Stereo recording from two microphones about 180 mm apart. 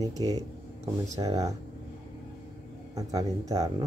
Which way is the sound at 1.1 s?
20° right (ahead or behind).